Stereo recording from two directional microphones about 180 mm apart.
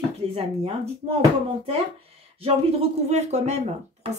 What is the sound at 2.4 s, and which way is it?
Speech, 35° right (ahead or behind).